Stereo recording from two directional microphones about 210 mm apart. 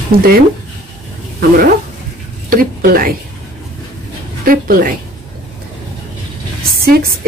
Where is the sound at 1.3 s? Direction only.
45° right (ahead or behind).